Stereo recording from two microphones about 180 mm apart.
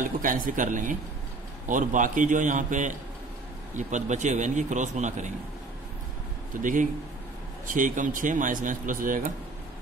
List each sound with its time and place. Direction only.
0.0 s speech: 45° right (ahead or behind)
6.6 s speech: 45° right (ahead or behind)